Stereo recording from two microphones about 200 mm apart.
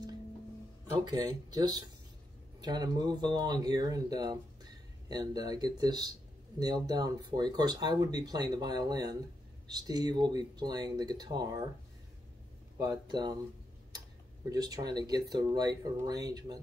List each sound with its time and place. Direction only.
0.9 s speech: 20° right (ahead or behind)
12.7 s speech: 20° right (ahead or behind)
14.5 s speech: 20° right (ahead or behind)